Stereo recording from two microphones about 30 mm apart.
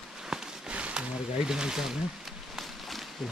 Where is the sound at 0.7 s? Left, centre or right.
Right.